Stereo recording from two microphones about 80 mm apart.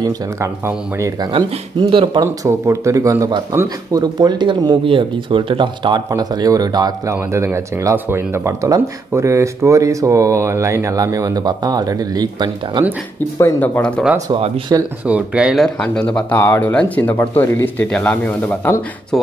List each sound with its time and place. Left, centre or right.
1.3 s speech: right
2.4 s speech: right
3.6 s speech: right
6.0 s speech: right
7.1 s speech: right
13.6 s speech: centre
14.7 s speech: right
15.0 s speech: centre
15.9 s speech: centre
16.3 s speech: left
17.8 s speech: centre